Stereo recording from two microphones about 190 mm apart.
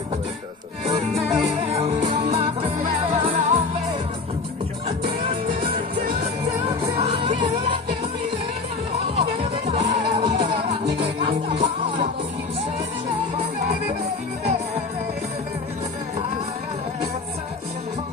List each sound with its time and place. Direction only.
1.3 s music: centre (ahead or behind)
1.7 s music: 30° right (ahead or behind)
4.8 s music: 30° right (ahead or behind)
7.0 s music: 30° right (ahead or behind)
9.7 s music: 35° right (ahead or behind)